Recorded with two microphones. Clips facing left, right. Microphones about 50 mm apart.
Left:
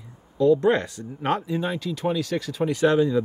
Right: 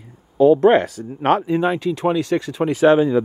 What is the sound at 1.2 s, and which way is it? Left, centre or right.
Speech, right.